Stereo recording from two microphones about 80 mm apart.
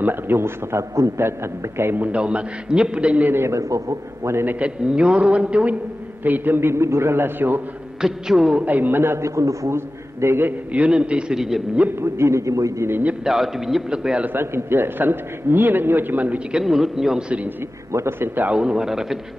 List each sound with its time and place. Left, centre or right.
0.0 s a man's voice: right
2.1 s a man's voice: centre
3.3 s a man's voice: right
4.6 s a man's voice: centre
8.0 s a man's voice: centre
8.6 s a man's voice: right
10.7 s a man's voice: centre
11.9 s a man's voice: right
13.2 s a man's voice: centre
14.2 s a man's voice: right
16.5 s a man's voice: centre
17.9 s a man's voice: right
18.5 s a man's voice: centre